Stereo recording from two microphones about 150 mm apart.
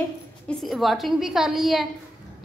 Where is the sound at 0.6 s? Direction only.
Centre (ahead or behind).